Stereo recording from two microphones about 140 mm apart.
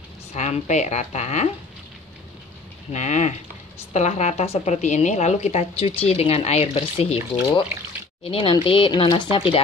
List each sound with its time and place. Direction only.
0.3 s a woman's voice: 55° left (ahead or behind)
2.9 s a woman's voice: 55° left (ahead or behind); by 9.6 s 35° left (ahead or behind)